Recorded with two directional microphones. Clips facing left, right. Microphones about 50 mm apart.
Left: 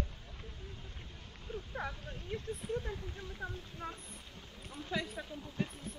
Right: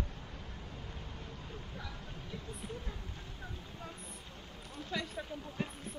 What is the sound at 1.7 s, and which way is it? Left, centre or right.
Vehicle, left.